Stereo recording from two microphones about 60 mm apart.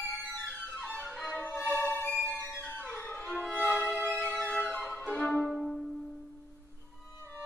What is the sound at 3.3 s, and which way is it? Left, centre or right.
Violin, left.